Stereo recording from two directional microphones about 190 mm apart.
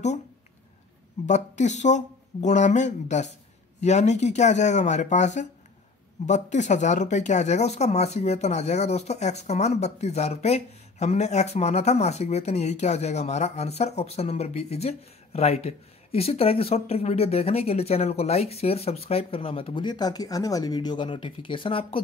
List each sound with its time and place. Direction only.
1.2 s speech: 40° left (ahead or behind)